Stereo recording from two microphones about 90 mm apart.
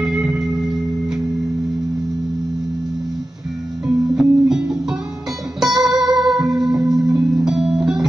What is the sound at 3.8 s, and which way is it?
Music, 5° right (ahead or behind).